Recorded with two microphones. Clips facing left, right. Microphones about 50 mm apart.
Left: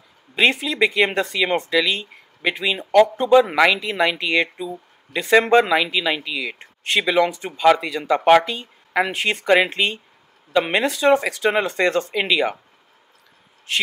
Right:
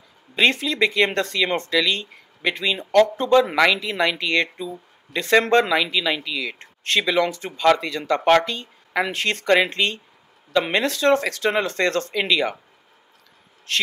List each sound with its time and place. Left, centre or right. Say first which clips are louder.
0.4 s speech: left 1 dB; centre
13.7 s speech: left 1 dB; centre